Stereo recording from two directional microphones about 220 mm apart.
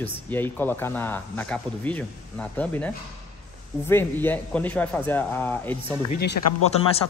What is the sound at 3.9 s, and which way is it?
Speech, 10° left (ahead or behind).